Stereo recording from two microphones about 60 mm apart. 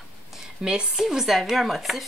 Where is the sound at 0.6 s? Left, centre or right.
Centre.